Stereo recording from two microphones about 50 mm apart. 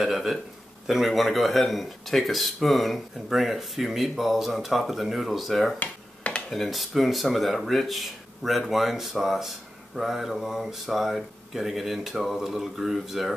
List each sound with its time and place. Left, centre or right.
0.0 s speech: centre
5.8 s a sound: left
6.5 s speech: centre